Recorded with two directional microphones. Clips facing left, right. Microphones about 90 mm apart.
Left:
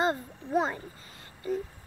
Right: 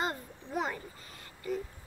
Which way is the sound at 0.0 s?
30° left (ahead or behind).